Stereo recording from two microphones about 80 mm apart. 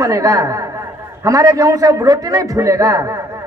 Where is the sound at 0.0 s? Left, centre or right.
Right.